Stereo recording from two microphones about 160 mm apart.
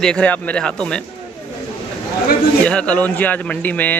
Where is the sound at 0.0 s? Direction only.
5° left (ahead or behind).